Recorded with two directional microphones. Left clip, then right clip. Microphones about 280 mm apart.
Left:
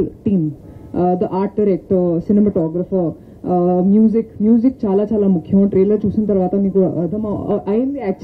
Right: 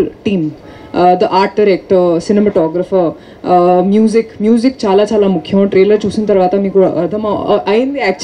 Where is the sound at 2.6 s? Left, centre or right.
Right.